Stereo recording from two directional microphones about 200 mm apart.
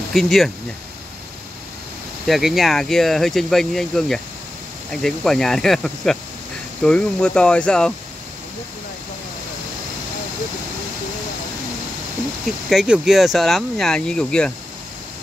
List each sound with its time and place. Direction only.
0.1 s speech: centre (ahead or behind)
2.2 s speech: centre (ahead or behind)
12.4 s speech: centre (ahead or behind)